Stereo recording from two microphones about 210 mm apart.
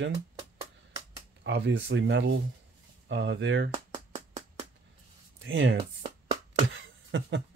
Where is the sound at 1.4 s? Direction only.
55° right (ahead or behind).